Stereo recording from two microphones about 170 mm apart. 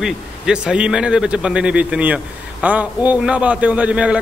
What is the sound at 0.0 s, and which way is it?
Speech, 5° right (ahead or behind).